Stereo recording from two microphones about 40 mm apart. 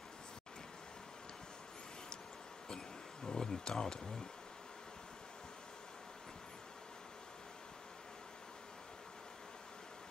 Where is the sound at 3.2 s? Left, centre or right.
Centre.